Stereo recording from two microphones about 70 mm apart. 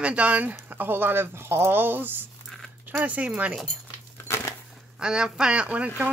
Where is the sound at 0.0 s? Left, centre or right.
Centre.